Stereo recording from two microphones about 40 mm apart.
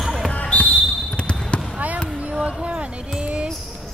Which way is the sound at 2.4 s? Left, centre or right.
Right.